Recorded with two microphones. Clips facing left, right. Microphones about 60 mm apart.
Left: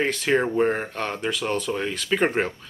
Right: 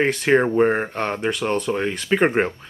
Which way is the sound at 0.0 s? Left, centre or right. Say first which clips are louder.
Right 4 dB; right.